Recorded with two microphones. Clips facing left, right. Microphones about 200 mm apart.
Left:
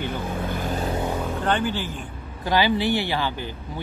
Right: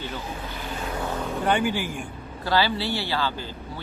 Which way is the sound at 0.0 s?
50° left (ahead or behind).